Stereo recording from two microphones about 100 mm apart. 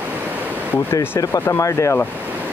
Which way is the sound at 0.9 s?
25° left (ahead or behind).